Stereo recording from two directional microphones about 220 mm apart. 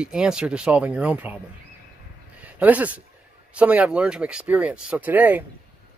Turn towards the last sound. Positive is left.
turn(degrees=-10)  # may be behind; listen again after turning